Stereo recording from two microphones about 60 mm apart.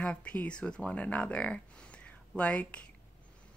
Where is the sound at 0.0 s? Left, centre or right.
Centre.